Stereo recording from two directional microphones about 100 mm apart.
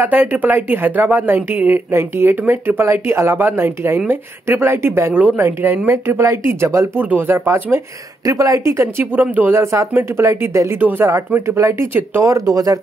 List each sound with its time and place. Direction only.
0.0 s speech: 20° right (ahead or behind)